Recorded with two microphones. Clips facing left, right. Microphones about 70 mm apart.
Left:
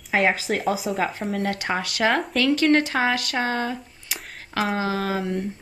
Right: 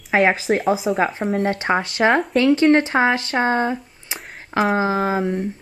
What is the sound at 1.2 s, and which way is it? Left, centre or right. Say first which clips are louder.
Speech: right 5 dB; right.